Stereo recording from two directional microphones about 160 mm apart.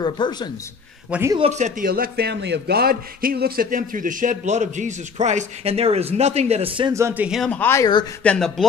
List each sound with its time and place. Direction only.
0.0 s speech: 25° left (ahead or behind)
1.1 s speech: 5° right (ahead or behind)
1.5 s speech: 45° right (ahead or behind)
1.9 s a man's voice: 85° right; by 6.9 s 40° right (ahead or behind)
6.9 s speech: 15° right (ahead or behind)
7.2 s speech: centre (ahead or behind)